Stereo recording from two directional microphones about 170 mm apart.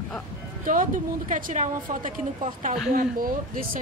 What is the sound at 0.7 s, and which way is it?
A woman's voice, 50° right (ahead or behind).